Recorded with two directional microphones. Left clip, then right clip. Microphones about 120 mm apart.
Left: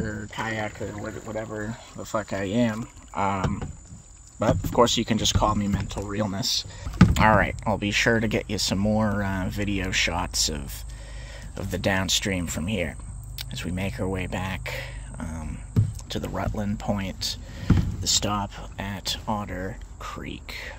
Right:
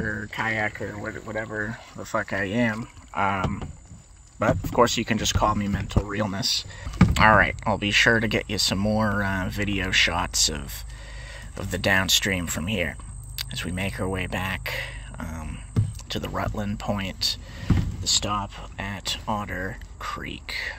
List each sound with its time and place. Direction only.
0.1 s speech: 20° right (ahead or behind); by 3.2 s 5° left (ahead or behind)
3.2 s speech: 15° left (ahead or behind)
18.0 s speech: 45° left (ahead or behind)
18.6 s speech: 20° left (ahead or behind)
19.3 s speech: 10° left (ahead or behind)